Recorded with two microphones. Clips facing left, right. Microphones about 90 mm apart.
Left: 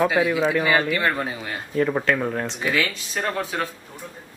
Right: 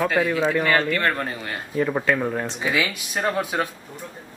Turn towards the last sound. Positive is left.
turn(degrees=-15)  # may be behind; listen again after turning